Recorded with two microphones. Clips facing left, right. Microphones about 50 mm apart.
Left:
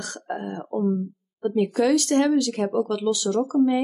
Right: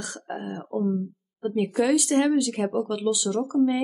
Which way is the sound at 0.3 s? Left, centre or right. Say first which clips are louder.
Left 2 dB; left.